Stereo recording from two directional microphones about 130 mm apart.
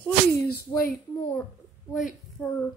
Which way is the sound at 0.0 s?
15° left (ahead or behind).